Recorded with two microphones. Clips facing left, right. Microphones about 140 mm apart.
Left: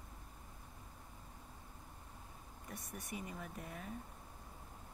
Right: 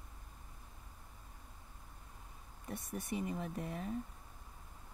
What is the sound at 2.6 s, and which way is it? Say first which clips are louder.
Speech: right 7 dB; 30° right (ahead or behind).